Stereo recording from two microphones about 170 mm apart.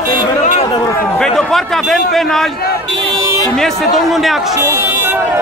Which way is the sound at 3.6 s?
Centre (ahead or behind).